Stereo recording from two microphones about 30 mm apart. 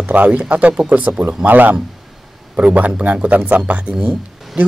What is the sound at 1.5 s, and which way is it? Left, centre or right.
Speech, right.